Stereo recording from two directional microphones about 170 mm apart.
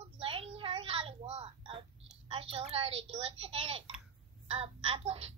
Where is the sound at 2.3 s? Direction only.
35° right (ahead or behind).